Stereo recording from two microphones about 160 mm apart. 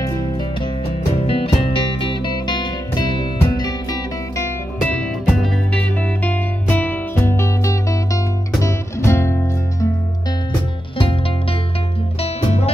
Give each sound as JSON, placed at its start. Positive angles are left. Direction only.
{"t": 1.2, "sound": "music", "side_deg": 35}
{"t": 5.2, "sound": "music", "side_deg": 0}
{"t": 12.2, "sound": "music", "side_deg": 35}